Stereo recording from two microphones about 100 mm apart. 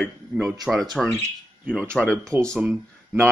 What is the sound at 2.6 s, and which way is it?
Speech, 5° right (ahead or behind).